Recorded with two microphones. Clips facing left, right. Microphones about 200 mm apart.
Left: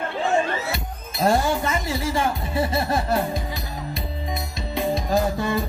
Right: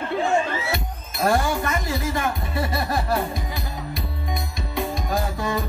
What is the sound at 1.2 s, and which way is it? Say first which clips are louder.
Speech: left 1 dB; 25° left (ahead or behind).